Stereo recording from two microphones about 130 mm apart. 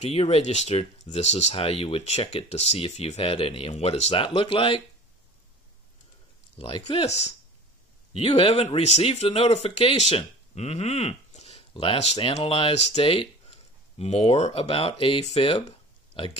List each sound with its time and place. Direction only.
0.0 s speech: 50° left (ahead or behind)
6.6 s speech: 50° left (ahead or behind)
8.1 s speech: 45° left (ahead or behind)